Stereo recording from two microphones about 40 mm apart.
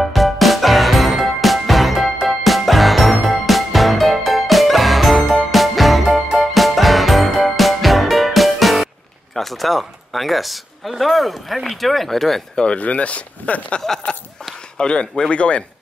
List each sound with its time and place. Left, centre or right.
0.0 s music: centre
9.3 s a man's voice: centre
12.7 s speech: left
13.7 s a sound: centre
14.8 s speech: left